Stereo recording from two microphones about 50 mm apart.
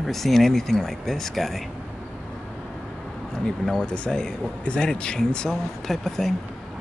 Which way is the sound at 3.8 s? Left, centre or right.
Centre.